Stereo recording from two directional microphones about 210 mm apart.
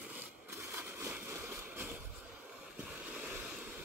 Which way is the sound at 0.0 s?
5° right (ahead or behind).